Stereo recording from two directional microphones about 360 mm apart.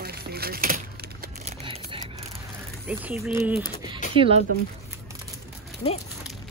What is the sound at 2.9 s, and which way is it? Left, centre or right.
Speech, centre.